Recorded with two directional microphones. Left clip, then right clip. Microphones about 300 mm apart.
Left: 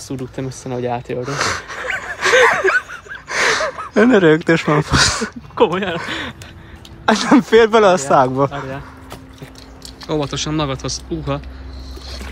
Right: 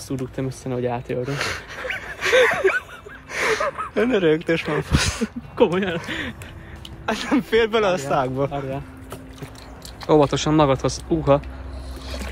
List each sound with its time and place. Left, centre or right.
0.1 s speech: left
1.2 s speech: left
1.9 s gasp: centre
2.9 s a sound: left
5.6 s speech: centre; by 8.8 s left
10.0 s speech: centre